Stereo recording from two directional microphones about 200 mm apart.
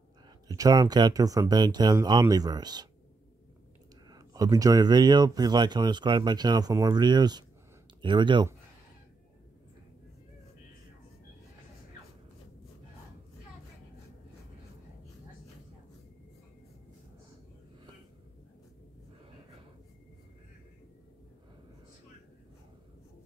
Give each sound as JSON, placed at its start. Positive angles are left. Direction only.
{"t": 0.5, "sound": "speech", "side_deg": -20}
{"t": 4.1, "sound": "speech", "side_deg": -15}